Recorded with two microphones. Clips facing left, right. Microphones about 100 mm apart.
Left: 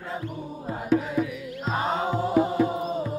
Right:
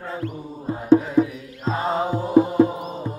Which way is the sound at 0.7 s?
30° right (ahead or behind).